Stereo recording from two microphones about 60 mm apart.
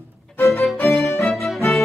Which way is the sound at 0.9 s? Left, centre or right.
Centre.